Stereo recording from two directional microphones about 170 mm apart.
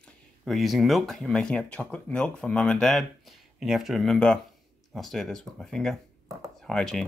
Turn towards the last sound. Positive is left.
turn(degrees=5)  # may be behind; listen again after turning